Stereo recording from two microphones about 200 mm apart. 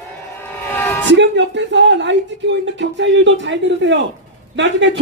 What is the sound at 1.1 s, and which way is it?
Speech, 60° right (ahead or behind).